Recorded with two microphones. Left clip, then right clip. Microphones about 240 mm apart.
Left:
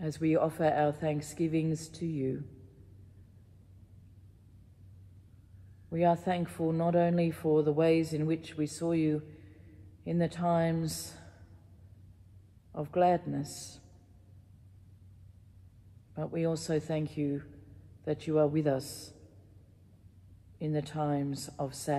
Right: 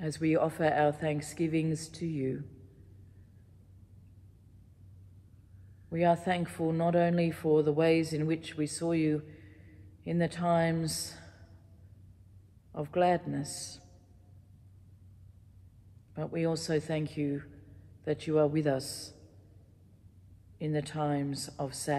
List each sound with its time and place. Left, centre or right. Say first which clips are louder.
0.0 s a man's voice: even; right
5.9 s a man's voice: right 1 dB; right
12.7 s a man's voice: left 1 dB; right
16.2 s a man's voice: even; right
20.7 s a man's voice: even; right